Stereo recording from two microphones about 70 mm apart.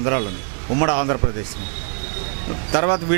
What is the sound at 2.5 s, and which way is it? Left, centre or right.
Speech, centre.